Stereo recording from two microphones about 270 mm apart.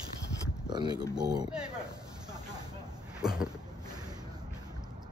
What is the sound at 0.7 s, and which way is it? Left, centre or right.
Speech, centre.